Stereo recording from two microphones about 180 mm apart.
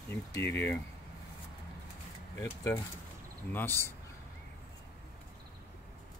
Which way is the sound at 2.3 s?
15° left (ahead or behind).